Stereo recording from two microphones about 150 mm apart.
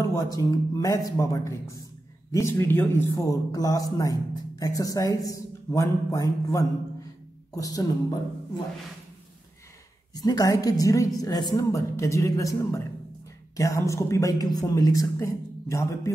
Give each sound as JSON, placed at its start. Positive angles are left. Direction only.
{"t": 0.0, "sound": "speech", "side_deg": 20}
{"t": 10.1, "sound": "speech", "side_deg": 25}